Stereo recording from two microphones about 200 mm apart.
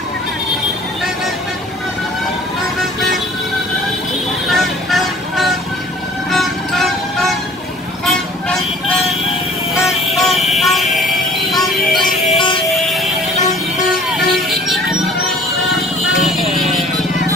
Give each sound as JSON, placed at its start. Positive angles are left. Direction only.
{"t": 4.5, "sound": "vehicle", "side_deg": 0}
{"t": 6.3, "sound": "music", "side_deg": 0}
{"t": 8.0, "sound": "vehicle", "side_deg": 0}
{"t": 9.8, "sound": "music", "side_deg": 0}
{"t": 12.3, "sound": "music", "side_deg": 25}
{"t": 12.8, "sound": "music", "side_deg": 0}
{"t": 14.1, "sound": "music", "side_deg": 0}